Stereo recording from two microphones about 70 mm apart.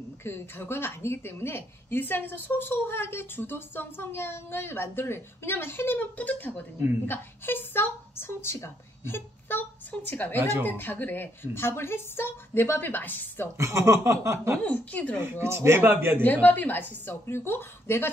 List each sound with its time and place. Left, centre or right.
0.2 s a woman's voice: left
13.6 s chuckle: right
14.6 s a woman's voice: left
15.2 s a man's voice: right
16.2 s a woman's voice: left